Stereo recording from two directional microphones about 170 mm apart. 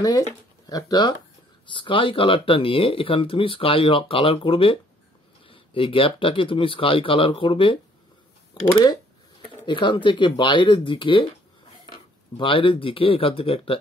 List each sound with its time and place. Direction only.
0.0 s speech: 20° left (ahead or behind)
9.7 s speech: 30° left (ahead or behind)